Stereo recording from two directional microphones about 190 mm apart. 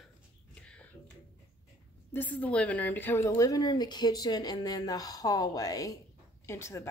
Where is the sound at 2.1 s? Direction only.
10° left (ahead or behind).